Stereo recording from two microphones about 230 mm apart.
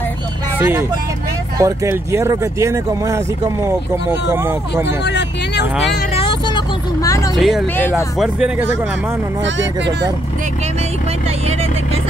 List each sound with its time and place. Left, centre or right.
0.6 s speech: centre
4.8 s vehicle: left
6.1 s vehicle: left
7.3 s speech: centre
9.4 s speech: right